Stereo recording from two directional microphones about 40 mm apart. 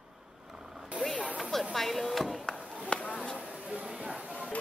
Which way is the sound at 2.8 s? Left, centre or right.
Left.